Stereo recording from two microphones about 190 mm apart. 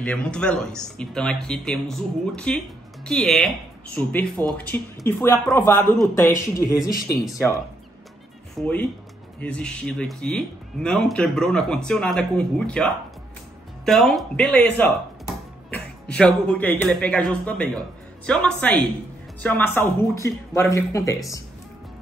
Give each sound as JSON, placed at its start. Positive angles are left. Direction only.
{"t": 0.0, "sound": "speech", "side_deg": 5}
{"t": 8.5, "sound": "speech", "side_deg": 10}